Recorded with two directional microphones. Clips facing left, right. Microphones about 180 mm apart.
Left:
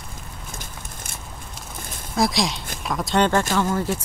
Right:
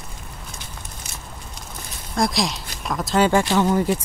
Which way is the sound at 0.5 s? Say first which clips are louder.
Left 1 dB; 55° left (ahead or behind).